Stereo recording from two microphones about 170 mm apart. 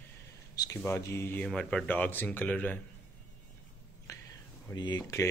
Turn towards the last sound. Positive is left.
turn(degrees=20)  # may be behind; listen again after turning